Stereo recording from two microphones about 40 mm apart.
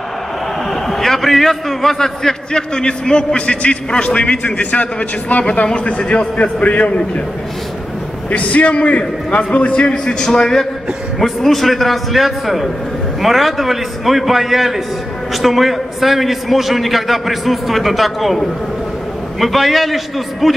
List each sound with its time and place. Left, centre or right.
0.8 s a man's voice: centre; by 4.8 s left
5.4 s a man's voice: left
8.3 s a man's voice: left; by 10.7 s centre
11.1 s a man's voice: centre
19.4 s a man's voice: centre